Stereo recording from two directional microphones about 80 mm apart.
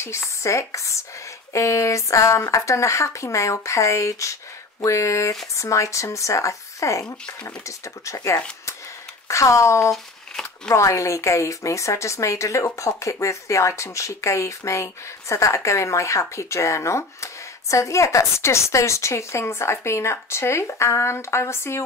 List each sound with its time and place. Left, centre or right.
0.0 s a woman's voice: left